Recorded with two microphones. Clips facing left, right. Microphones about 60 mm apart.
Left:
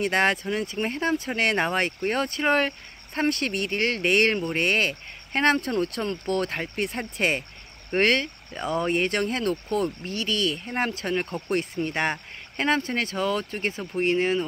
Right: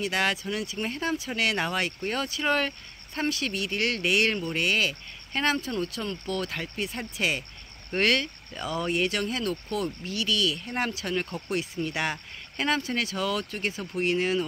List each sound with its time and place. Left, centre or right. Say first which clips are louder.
0.0 s speech: left 4 dB; left
3.3 s speech: left 3 dB; left
7.9 s speech: left 3 dB; left
10.6 s speech: left 3 dB; left
10.9 s speech: left 3 dB; left
11.1 s speech: left 2 dB; left
11.4 s speech: left 3 dB; left